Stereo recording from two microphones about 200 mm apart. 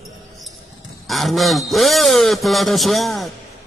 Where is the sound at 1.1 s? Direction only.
Centre (ahead or behind).